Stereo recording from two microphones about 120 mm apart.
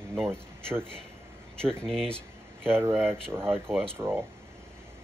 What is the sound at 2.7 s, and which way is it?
Speech, 20° right (ahead or behind).